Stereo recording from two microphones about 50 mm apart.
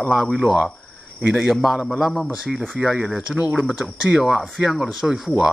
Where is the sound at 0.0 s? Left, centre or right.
Centre.